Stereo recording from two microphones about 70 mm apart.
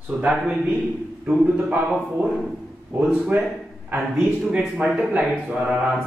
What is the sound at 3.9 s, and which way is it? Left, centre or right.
Speech, right.